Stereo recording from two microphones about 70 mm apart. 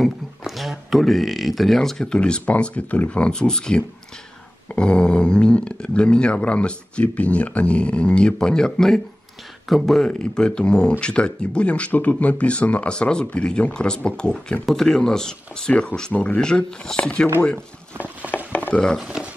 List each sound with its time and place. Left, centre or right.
0.0 s speech: centre
17.9 s a sound: right
18.7 s speech: centre